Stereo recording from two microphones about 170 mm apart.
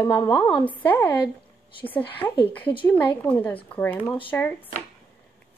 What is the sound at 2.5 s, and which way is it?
A woman's voice, 10° left (ahead or behind).